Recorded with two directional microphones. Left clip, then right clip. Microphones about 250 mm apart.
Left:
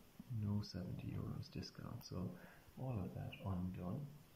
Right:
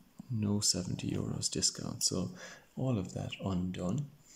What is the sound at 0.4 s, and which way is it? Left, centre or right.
Speech, right.